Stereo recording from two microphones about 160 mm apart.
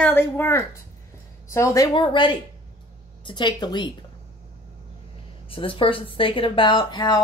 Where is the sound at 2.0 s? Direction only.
30° left (ahead or behind).